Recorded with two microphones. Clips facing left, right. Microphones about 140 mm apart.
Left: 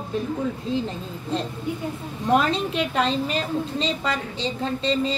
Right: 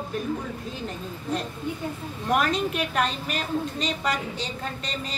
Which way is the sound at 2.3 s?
25° left (ahead or behind).